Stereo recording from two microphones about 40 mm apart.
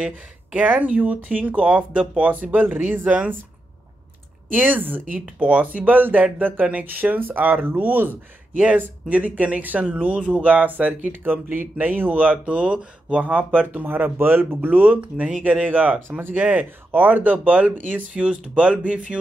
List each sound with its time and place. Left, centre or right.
0.6 s speech: right
2.6 s speech: right
4.5 s speech: right
8.5 s speech: right
11.3 s speech: right
11.8 s speech: right
12.4 s speech: right
13.2 s speech: right
13.8 s speech: right
14.1 s speech: right
14.7 s speech: right
15.0 s speech: right
15.4 s speech: right
18.1 s speech: right